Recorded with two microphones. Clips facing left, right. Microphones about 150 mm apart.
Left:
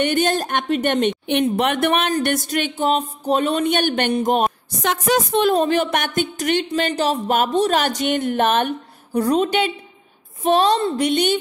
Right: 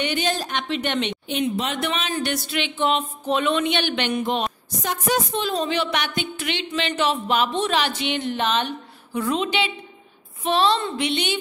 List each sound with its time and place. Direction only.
0.0 s speech: 50° left (ahead or behind)
4.8 s speech: 80° left; by 11.3 s 45° left (ahead or behind)